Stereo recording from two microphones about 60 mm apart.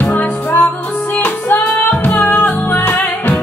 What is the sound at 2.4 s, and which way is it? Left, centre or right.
Music, left.